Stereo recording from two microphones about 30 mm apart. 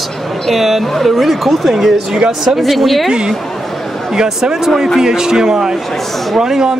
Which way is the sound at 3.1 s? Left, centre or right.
Right.